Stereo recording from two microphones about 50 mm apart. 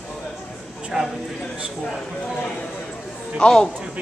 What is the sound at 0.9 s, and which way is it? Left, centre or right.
Speech, centre.